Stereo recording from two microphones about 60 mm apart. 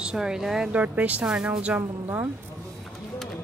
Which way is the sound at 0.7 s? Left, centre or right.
Right.